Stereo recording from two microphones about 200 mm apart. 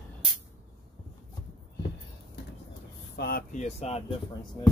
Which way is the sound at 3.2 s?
50° left (ahead or behind).